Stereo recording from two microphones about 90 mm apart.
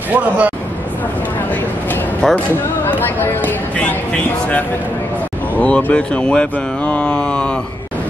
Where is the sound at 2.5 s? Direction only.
25° left (ahead or behind).